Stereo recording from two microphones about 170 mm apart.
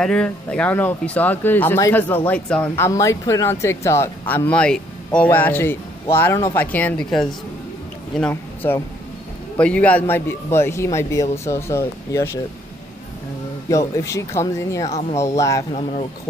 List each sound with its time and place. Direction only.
0.0 s speech: 5° left (ahead or behind)
2.8 s speech: 20° left (ahead or behind)
13.7 s speech: 20° left (ahead or behind)